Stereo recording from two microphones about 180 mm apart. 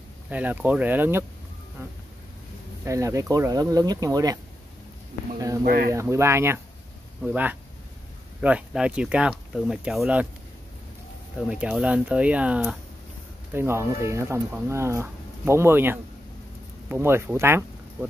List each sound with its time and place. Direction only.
0.3 s speech: 10° right (ahead or behind)
5.7 s speech: 55° right (ahead or behind)
5.9 s speech: 15° right (ahead or behind)
11.4 s speech: 5° right (ahead or behind)